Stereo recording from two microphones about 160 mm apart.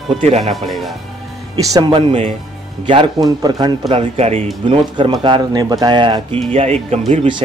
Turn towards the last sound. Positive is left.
turn(degrees=-40)  # may be behind; listen again after turning